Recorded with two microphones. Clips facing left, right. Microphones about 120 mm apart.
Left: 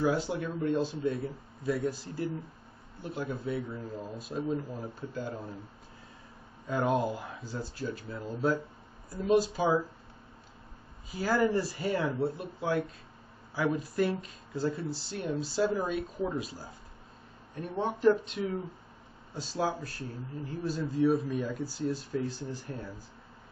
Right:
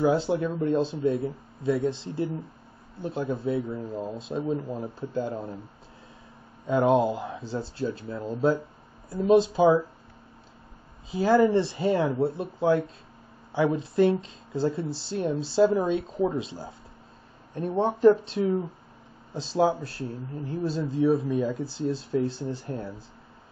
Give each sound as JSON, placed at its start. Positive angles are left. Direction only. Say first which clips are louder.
{"t": 0.0, "sound": "speech", "louder": "right 6 dB", "side_deg": -25}
{"t": 6.7, "sound": "speech", "louder": "right 7 dB", "side_deg": -25}
{"t": 11.1, "sound": "speech", "louder": "right 7 dB", "side_deg": -25}